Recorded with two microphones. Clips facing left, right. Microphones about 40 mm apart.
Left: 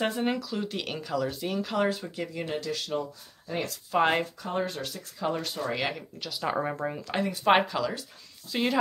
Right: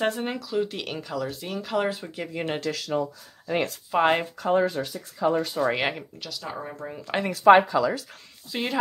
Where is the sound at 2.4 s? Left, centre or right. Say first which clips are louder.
Right 5 dB; right.